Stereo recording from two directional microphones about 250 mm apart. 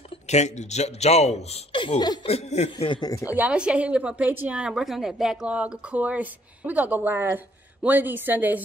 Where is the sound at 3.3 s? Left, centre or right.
Centre.